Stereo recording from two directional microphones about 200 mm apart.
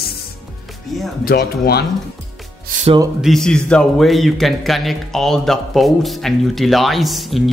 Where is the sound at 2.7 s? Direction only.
45° right (ahead or behind).